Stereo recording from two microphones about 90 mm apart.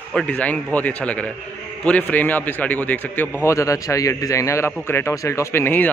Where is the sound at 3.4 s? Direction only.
35° left (ahead or behind).